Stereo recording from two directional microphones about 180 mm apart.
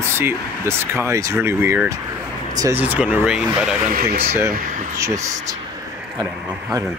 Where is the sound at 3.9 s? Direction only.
55° right (ahead or behind).